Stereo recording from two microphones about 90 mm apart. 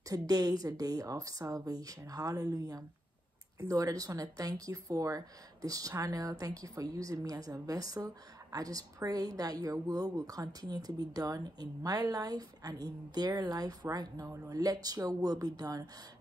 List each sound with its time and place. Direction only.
0.1 s a woman's voice: 45° right (ahead or behind)